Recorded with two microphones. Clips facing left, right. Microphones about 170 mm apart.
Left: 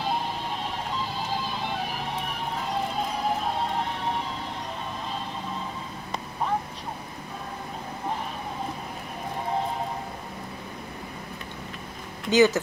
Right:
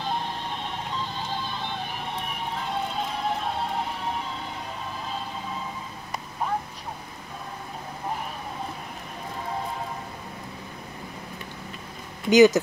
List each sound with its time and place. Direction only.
0.7 s music: 5° left (ahead or behind)
12.3 s speech: 15° right (ahead or behind)